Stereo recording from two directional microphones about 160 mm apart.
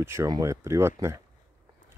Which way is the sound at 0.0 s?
15° right (ahead or behind).